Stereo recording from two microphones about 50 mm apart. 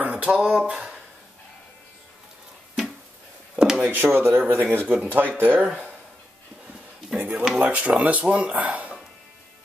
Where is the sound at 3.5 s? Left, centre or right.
Centre.